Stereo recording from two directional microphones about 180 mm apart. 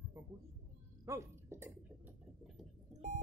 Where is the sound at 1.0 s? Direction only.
15° right (ahead or behind).